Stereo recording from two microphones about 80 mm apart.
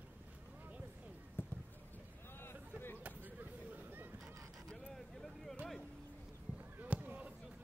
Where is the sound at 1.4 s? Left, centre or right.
Left.